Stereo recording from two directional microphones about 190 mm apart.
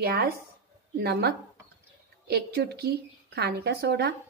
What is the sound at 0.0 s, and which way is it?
A woman's voice, 55° right (ahead or behind).